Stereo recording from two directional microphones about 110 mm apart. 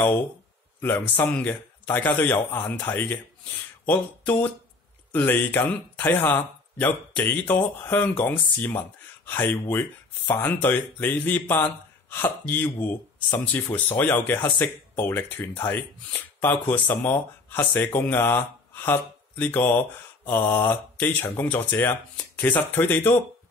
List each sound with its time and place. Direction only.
0.7 s a man's voice: 20° left (ahead or behind)